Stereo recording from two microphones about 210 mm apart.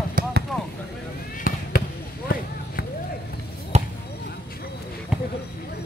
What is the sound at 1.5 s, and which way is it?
Basketball bounce, 40° left (ahead or behind).